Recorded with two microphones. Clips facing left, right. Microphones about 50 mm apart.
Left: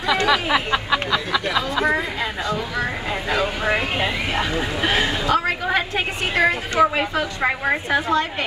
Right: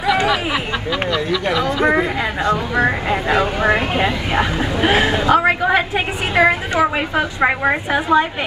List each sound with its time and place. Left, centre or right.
0.0 s a sound: centre
1.6 s speech: right
4.3 s a woman's voice: right